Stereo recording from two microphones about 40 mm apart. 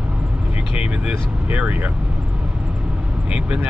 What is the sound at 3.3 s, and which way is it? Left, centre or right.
Speech, right.